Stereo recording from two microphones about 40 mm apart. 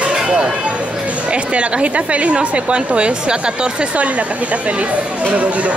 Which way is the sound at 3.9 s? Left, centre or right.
Right.